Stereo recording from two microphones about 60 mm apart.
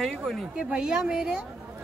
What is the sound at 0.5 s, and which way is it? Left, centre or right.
Speech, centre.